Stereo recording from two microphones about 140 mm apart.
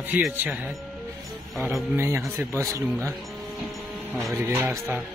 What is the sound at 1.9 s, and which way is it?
Speech, 20° right (ahead or behind).